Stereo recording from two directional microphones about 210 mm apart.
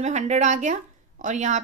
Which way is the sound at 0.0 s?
35° right (ahead or behind).